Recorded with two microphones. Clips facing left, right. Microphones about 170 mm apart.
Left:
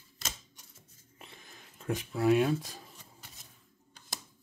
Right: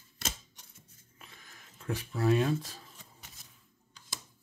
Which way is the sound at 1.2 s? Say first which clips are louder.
Left 3 dB; 25° left (ahead or behind).